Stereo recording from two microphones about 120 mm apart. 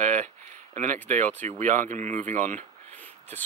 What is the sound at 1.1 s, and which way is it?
Speech, 85° right.